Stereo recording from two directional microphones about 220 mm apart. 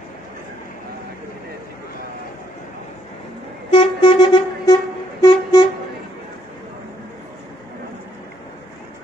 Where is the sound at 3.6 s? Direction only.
25° left (ahead or behind).